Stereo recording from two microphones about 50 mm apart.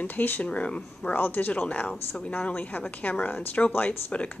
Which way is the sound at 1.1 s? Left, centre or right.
Left.